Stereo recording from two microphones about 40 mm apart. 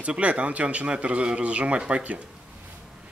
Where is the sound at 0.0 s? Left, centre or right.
Right.